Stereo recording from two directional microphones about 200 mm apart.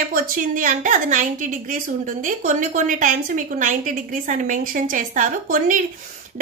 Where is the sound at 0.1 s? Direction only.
40° right (ahead or behind).